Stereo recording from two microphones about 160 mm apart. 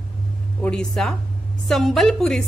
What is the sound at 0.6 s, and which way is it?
Speech, 5° left (ahead or behind).